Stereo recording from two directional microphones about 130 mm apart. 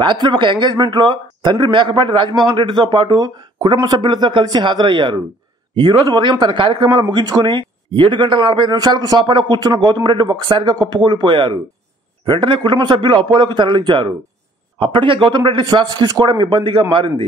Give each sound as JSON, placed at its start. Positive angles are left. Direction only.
{"t": 0.0, "sound": "a man's voice", "side_deg": -40}